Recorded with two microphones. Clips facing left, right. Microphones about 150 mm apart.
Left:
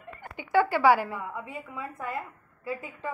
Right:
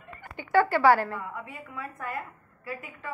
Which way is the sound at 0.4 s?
15° left (ahead or behind).